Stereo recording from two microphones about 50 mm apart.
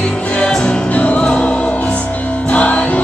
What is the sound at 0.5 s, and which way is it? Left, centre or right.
Music, centre.